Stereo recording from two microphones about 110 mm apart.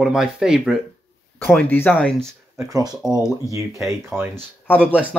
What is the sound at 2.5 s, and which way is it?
Speech, 30° right (ahead or behind).